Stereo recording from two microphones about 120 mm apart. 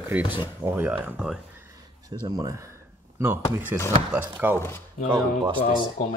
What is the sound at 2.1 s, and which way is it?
Speech, 40° right (ahead or behind).